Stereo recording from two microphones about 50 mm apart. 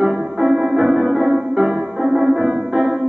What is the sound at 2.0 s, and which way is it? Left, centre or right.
Music, centre.